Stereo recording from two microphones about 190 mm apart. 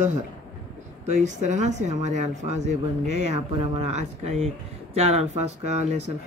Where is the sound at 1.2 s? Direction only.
40° right (ahead or behind).